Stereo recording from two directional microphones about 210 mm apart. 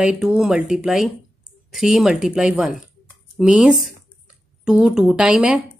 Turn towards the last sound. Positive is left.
turn(degrees=-5)  # may be behind; listen again after turning